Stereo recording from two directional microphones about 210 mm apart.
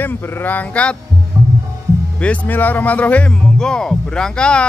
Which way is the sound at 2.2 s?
5° left (ahead or behind).